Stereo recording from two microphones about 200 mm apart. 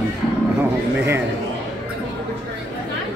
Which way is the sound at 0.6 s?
10° right (ahead or behind).